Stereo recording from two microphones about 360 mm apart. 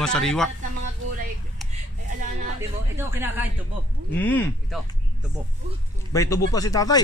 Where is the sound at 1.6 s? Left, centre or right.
Centre.